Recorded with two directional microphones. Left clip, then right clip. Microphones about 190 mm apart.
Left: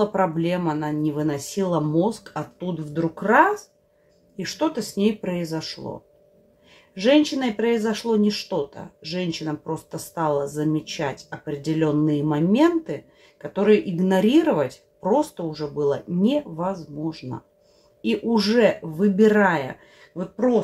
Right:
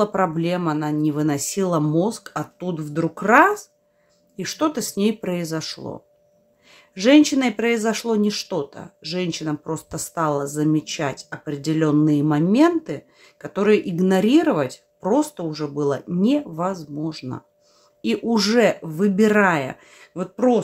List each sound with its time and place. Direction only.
0.0 s speech: 30° right (ahead or behind); by 20.6 s 50° right (ahead or behind)